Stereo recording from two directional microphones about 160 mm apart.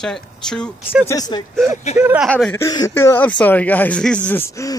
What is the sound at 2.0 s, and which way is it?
Speech, 10° right (ahead or behind).